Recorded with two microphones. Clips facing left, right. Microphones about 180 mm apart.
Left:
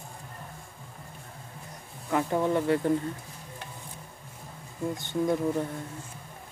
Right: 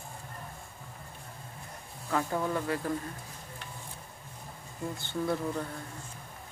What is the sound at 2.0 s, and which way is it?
Speech, 20° left (ahead or behind).